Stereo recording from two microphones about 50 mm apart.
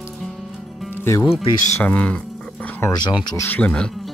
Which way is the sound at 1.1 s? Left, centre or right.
Left.